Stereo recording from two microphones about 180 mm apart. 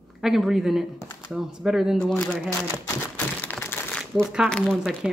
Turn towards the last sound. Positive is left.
turn(degrees=0)  # may be behind; listen again after turning